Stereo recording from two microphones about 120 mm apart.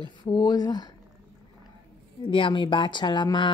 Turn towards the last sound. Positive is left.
turn(degrees=40)  # may be behind; listen again after turning